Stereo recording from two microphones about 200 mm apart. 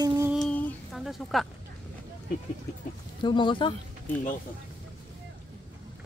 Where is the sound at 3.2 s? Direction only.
25° left (ahead or behind).